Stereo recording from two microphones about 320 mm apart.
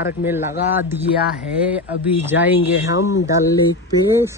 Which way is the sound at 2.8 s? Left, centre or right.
Left.